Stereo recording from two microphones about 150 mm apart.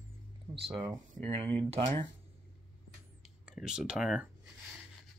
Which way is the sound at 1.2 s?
35° right (ahead or behind).